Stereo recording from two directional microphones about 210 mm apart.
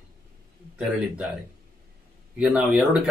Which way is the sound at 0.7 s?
5° right (ahead or behind).